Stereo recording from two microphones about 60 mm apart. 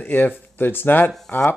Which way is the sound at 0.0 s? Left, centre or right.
Left.